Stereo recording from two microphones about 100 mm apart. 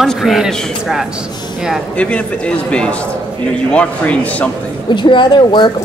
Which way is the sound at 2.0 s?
10° left (ahead or behind).